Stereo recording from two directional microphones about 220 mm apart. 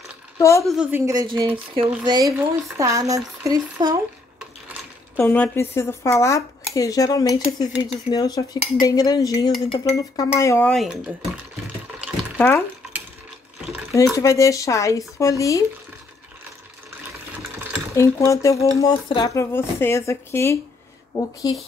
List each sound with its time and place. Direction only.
0.4 s speech: 15° left (ahead or behind)
0.7 s speech: 10° right (ahead or behind)
5.1 s speech: 5° left (ahead or behind)
10.7 s speech: centre (ahead or behind)
12.4 s speech: 5° left (ahead or behind)
14.1 s speech: 15° left (ahead or behind)
17.9 s speech: 15° left (ahead or behind)